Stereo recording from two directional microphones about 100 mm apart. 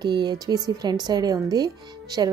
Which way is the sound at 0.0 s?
50° right (ahead or behind).